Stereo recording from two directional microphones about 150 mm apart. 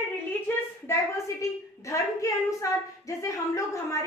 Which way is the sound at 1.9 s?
20° left (ahead or behind).